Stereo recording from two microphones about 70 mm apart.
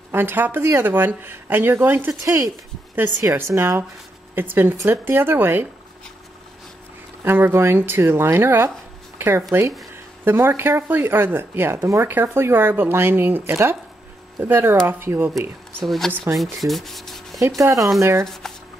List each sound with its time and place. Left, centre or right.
0.1 s speech: right
2.2 s speech: right
4.4 s speech: right
7.2 s speech: right
15.8 s speech: centre
16.3 s rub: centre
17.4 s speech: right
18.2 s speech: centre